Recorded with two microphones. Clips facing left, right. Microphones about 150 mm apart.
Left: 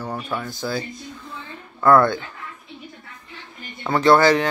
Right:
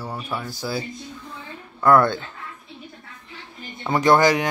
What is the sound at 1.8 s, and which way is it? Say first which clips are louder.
Speech: left 1 dB; 20° right (ahead or behind).